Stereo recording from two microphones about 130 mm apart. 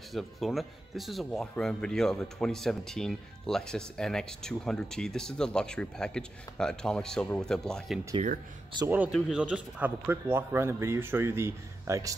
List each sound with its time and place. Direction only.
0.1 s speech: centre (ahead or behind)
8.8 s speech: 15° right (ahead or behind)